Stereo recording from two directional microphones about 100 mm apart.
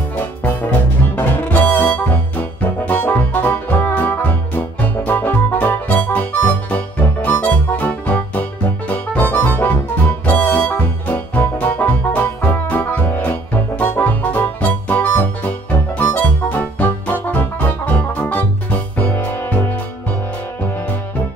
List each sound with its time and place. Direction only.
1.1 s music: 15° left (ahead or behind)